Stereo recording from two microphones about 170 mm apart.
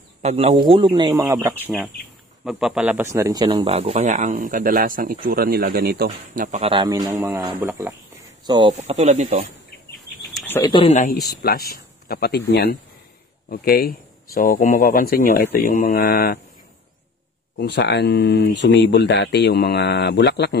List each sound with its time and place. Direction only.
0.2 s a man's voice: 40° right (ahead or behind)
1.2 s a man's voice: 15° right (ahead or behind)
3.6 s speech: 40° right (ahead or behind)
6.6 s a man's voice: 30° right (ahead or behind)
7.1 s speech: 15° right (ahead or behind)
8.7 s a man's voice: 40° right (ahead or behind)
10.6 s speech: 30° left (ahead or behind)
10.9 s speech: 50° left (ahead or behind)
11.1 s speech: 65° left (ahead or behind)
17.6 s speech: 90° left